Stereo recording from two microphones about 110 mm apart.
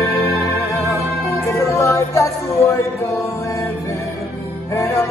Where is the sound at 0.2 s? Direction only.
20° left (ahead or behind).